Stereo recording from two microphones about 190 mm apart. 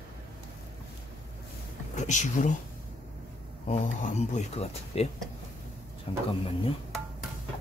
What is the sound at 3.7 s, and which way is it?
Speech, 35° left (ahead or behind).